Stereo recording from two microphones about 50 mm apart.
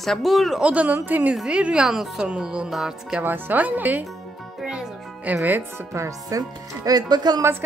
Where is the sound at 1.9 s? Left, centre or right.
Centre.